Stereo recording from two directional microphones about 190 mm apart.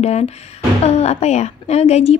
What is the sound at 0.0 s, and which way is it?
A woman's voice, 35° left (ahead or behind).